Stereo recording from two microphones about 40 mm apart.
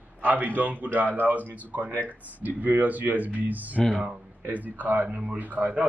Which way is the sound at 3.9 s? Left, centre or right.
Right.